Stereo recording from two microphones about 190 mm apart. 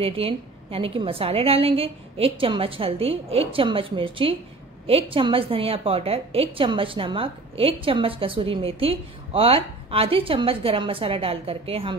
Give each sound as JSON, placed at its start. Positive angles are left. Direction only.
{"t": 0.0, "sound": "a woman's voice", "side_deg": -30}